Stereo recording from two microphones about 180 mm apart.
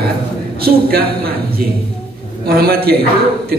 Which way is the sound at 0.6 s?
60° right (ahead or behind).